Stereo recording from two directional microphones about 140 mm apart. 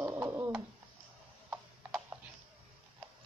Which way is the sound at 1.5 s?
15° right (ahead or behind).